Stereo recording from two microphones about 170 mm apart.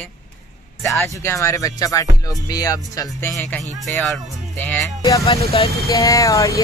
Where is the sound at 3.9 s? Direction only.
5° left (ahead or behind).